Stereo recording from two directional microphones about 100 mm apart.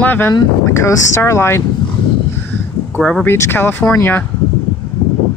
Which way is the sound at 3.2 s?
25° left (ahead or behind).